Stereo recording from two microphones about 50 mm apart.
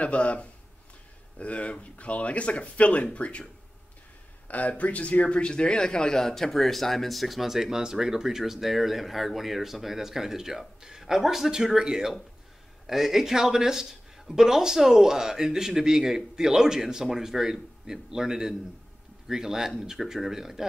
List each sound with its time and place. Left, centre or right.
0.0 s speech: left
4.5 s a man's voice: left; by 20.6 s centre